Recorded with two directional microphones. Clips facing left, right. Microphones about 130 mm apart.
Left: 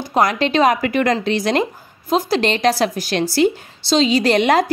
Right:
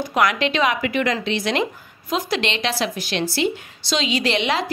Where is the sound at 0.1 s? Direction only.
35° left (ahead or behind).